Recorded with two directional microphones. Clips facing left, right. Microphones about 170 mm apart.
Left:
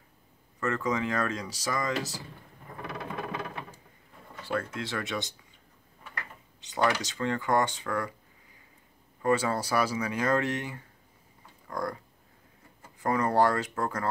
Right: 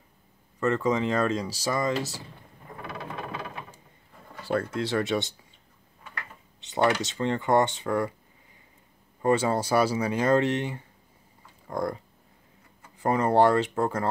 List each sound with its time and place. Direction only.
0.6 s speech: 25° right (ahead or behind)
4.5 s speech: 35° right (ahead or behind)
6.6 s speech: 25° right (ahead or behind)
9.2 s speech: 25° right (ahead or behind)
13.0 s speech: 25° right (ahead or behind)